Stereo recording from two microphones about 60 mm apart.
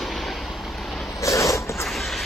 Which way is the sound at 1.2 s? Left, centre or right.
Left.